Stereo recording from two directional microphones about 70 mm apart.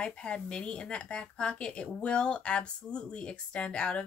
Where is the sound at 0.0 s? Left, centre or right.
Centre.